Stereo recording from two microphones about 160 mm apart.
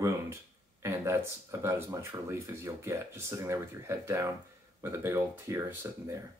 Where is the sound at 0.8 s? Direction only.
15° right (ahead or behind).